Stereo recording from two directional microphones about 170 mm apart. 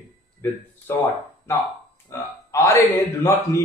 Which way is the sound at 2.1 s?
15° left (ahead or behind).